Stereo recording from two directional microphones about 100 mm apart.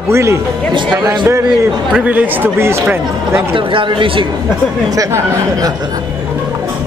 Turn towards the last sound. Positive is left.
turn(degrees=-35)  # may be behind; listen again after turning